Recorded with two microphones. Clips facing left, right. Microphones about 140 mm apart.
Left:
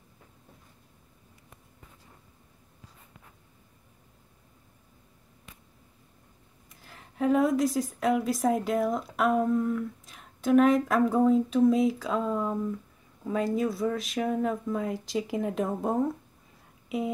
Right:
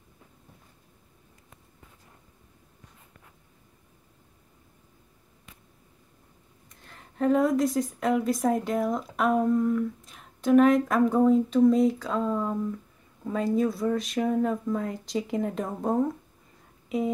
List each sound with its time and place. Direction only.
6.8 s a woman's voice: 5° left (ahead or behind)